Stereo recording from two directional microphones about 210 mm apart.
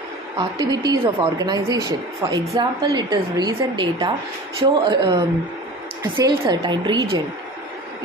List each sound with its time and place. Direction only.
0.4 s speech: 20° right (ahead or behind)